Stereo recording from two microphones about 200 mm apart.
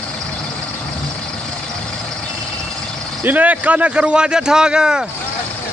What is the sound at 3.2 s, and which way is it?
A man's voice, 10° right (ahead or behind).